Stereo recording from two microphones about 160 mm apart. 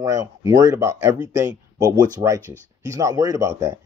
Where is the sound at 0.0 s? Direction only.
20° right (ahead or behind).